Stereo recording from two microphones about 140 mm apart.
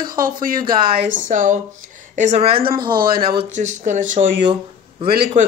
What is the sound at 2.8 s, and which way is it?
Speech, 35° right (ahead or behind).